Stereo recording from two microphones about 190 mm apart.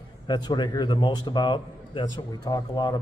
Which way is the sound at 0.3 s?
20° left (ahead or behind).